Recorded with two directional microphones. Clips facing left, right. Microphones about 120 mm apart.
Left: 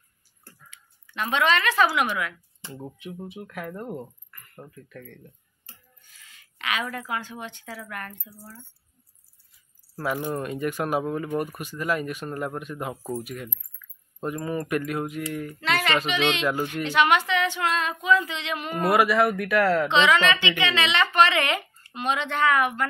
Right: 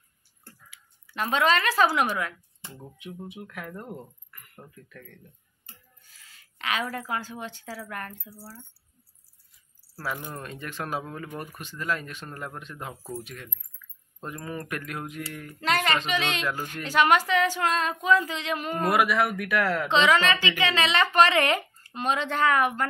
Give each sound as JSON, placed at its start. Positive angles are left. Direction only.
{"t": 1.1, "sound": "a woman's voice", "side_deg": -35}
{"t": 3.0, "sound": "speech", "side_deg": 0}
{"t": 4.3, "sound": "a sound", "side_deg": -10}
{"t": 6.2, "sound": "a woman's voice", "side_deg": -35}
{"t": 9.9, "sound": "speech", "side_deg": 15}
{"t": 15.6, "sound": "a woman's voice", "side_deg": -40}
{"t": 18.8, "sound": "speech", "side_deg": 0}
{"t": 19.9, "sound": "a woman's voice", "side_deg": -40}